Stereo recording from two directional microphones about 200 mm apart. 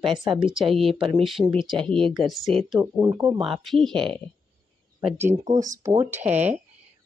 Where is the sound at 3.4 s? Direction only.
Centre (ahead or behind).